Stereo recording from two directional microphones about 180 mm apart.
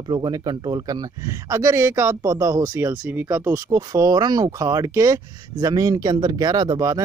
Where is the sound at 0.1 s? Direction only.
25° right (ahead or behind).